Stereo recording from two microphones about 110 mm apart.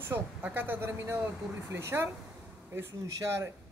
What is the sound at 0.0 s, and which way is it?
Speech, 15° right (ahead or behind).